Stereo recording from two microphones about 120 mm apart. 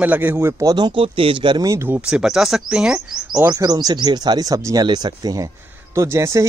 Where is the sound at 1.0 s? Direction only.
50° right (ahead or behind).